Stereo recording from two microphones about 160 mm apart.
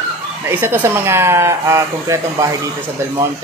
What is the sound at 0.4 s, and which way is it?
Speech, 15° right (ahead or behind).